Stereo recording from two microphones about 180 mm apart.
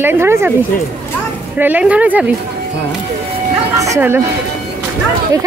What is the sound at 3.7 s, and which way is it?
Speech, 15° right (ahead or behind).